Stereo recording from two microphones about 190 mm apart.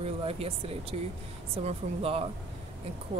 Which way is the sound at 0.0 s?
30° right (ahead or behind).